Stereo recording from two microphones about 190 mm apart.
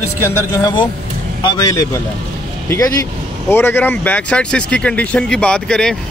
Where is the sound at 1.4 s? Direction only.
20° left (ahead or behind); by 6.0 s 5° left (ahead or behind).